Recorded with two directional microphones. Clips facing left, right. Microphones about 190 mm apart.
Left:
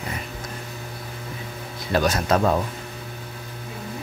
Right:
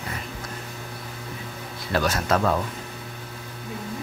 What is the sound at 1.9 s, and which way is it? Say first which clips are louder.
Speech: left 2 dB; 20° left (ahead or behind).